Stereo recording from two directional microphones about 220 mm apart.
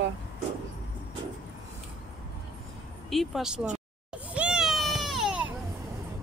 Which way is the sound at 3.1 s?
Centre (ahead or behind).